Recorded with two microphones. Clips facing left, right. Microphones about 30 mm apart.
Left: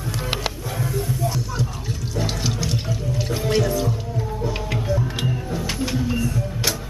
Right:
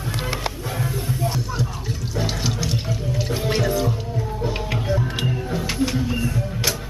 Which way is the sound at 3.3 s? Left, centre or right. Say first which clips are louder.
Left 1 dB; centre.